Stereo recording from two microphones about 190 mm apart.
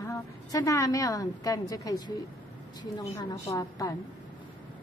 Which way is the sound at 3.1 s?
15° left (ahead or behind).